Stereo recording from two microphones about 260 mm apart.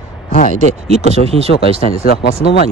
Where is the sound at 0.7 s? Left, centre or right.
Right.